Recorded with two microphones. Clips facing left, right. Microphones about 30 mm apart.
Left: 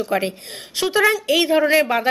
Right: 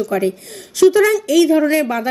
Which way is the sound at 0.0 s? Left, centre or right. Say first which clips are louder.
Right 3 dB; left.